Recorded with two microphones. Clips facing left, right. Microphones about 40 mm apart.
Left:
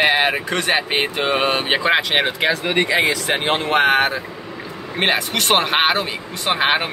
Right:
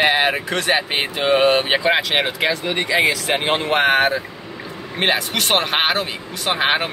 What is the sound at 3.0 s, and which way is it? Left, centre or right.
Speech, centre.